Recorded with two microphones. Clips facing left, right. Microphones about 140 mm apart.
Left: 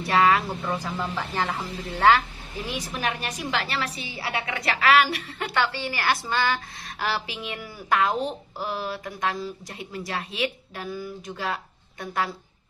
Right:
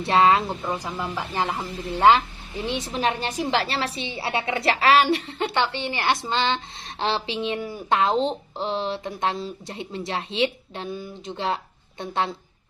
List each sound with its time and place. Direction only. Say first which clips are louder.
0.0 s speech: right 2 dB; 25° right (ahead or behind)